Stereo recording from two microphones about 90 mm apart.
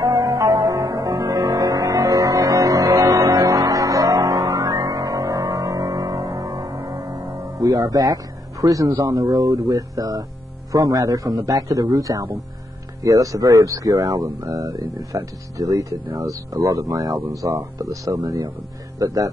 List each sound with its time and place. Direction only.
0.0 s music: 40° right (ahead or behind)
9.6 s a man's voice: 35° right (ahead or behind)